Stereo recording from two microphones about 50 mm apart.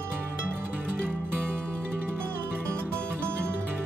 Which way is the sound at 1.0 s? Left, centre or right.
Right.